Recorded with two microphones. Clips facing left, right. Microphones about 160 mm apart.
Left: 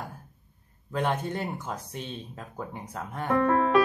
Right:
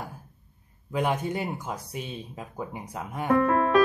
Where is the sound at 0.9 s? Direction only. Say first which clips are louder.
Right 2 dB; 10° right (ahead or behind).